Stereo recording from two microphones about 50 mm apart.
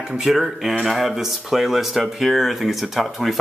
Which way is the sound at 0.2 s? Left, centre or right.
Centre.